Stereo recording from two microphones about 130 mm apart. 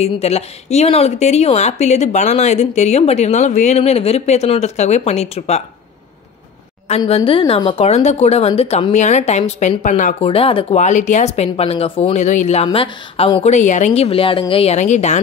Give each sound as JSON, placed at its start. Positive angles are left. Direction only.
{"t": 0.0, "sound": "speech", "side_deg": 55}
{"t": 7.1, "sound": "speech", "side_deg": 50}
{"t": 8.9, "sound": "a woman's voice", "side_deg": 65}
{"t": 10.2, "sound": "speech", "side_deg": 45}
{"t": 12.7, "sound": "speech", "side_deg": 45}